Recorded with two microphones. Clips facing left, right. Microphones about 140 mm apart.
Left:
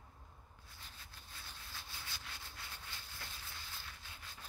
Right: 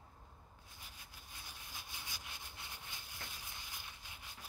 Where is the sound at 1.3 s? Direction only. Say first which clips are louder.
Even; 15° right (ahead or behind).